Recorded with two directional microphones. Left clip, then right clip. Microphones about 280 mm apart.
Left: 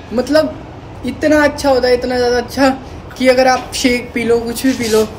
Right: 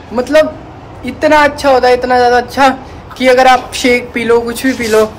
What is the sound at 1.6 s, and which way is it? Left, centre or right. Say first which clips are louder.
A woman's voice: right 4 dB; centre.